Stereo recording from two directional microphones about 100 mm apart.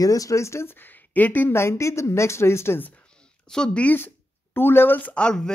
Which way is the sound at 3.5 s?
10° left (ahead or behind).